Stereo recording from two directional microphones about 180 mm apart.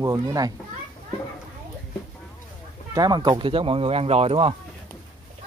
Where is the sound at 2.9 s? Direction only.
25° right (ahead or behind).